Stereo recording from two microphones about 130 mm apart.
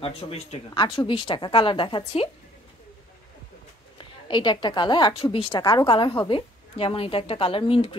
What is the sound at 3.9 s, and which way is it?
A woman's voice, 35° left (ahead or behind).